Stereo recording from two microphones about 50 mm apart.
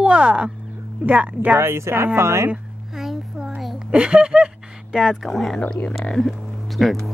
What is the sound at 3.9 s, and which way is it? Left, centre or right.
Speech, right.